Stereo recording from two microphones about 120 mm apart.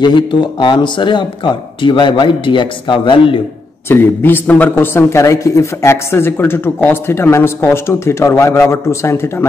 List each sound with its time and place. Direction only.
0.0 s speech: 40° left (ahead or behind)
3.9 s speech: 20° left (ahead or behind)